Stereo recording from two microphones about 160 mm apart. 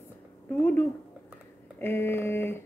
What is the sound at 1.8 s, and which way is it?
Speech, 15° left (ahead or behind).